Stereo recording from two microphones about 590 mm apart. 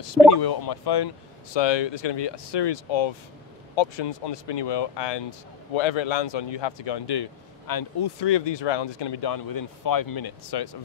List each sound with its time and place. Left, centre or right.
0.3 s speech: left